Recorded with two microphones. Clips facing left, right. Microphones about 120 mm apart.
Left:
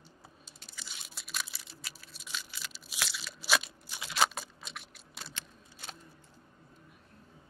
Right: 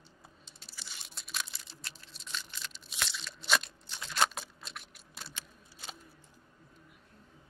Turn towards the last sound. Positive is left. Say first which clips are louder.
# even
turn(degrees=0)  # may be behind; listen again after turning